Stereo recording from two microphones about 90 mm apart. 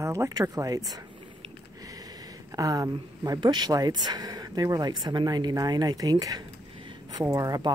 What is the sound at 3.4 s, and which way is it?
Speech, 55° right (ahead or behind).